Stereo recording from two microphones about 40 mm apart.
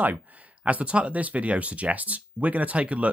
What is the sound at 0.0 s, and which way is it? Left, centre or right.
Speech, right.